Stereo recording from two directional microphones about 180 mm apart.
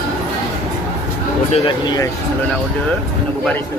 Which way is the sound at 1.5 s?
30° left (ahead or behind).